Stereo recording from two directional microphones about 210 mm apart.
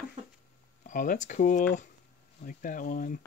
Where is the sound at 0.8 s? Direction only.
40° left (ahead or behind).